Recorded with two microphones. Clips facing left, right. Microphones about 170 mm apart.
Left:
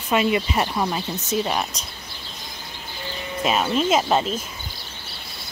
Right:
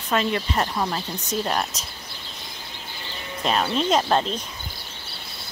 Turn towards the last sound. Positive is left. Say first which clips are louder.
# left 1 dB
turn(degrees=5)  # may be behind; listen again after turning